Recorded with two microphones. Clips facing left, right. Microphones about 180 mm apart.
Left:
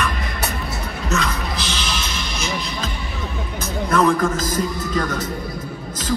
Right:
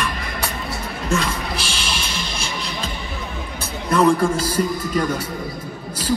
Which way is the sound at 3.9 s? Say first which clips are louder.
Right 2 dB; 30° right (ahead or behind).